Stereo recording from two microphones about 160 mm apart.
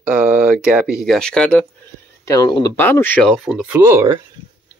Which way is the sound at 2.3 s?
25° left (ahead or behind).